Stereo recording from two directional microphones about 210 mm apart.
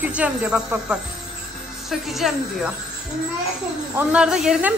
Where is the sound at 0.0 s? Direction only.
5° right (ahead or behind).